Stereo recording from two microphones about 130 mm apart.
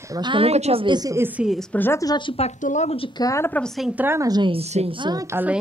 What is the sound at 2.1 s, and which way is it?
Speech, 40° left (ahead or behind).